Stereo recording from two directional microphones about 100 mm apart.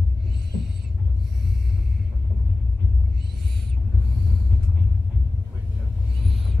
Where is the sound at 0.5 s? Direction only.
5° right (ahead or behind).